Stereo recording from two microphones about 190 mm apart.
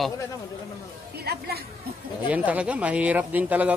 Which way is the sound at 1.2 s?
55° right (ahead or behind).